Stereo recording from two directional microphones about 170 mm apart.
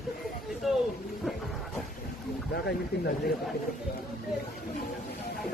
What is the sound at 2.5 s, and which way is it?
Speech, 75° left (ahead or behind).